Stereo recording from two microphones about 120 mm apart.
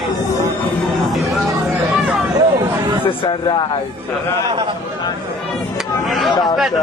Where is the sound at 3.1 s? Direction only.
40° left (ahead or behind).